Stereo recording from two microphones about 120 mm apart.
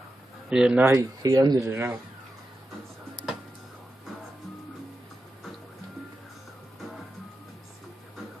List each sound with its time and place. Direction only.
0.5 s speech: 5° right (ahead or behind)
0.8 s speech: 30° right (ahead or behind)